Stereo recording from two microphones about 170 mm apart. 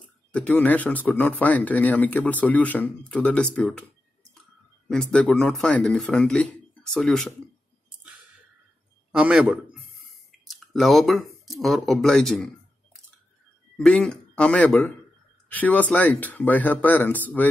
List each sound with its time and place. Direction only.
0.3 s speech: 10° left (ahead or behind)
4.8 s speech: 5° left (ahead or behind)
9.1 s a man's voice: 5° right (ahead or behind)
13.7 s speech: 5° left (ahead or behind)